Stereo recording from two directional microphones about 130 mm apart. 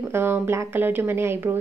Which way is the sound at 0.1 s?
20° right (ahead or behind).